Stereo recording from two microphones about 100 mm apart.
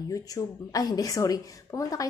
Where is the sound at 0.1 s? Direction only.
35° left (ahead or behind).